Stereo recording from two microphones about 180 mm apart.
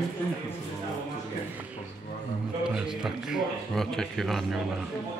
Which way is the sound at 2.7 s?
5° right (ahead or behind).